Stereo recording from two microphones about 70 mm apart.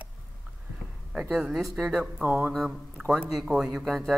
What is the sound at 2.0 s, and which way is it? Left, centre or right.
Speech, right.